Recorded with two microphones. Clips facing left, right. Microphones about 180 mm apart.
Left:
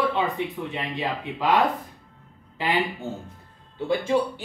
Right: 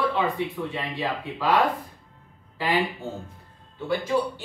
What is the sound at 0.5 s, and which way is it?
Speech, 20° left (ahead or behind).